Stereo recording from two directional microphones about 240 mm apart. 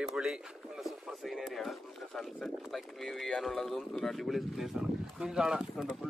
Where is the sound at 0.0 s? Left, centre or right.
Centre.